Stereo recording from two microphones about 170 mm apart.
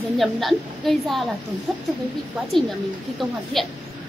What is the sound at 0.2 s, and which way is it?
A woman's voice, centre (ahead or behind).